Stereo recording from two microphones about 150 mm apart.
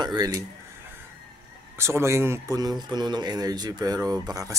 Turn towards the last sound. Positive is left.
turn(degrees=-25)  # may be behind; listen again after turning